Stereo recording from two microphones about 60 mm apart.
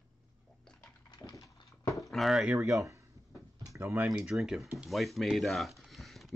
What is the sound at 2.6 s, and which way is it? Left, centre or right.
Speech, right.